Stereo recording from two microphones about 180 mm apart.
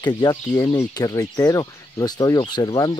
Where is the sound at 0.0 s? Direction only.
25° left (ahead or behind).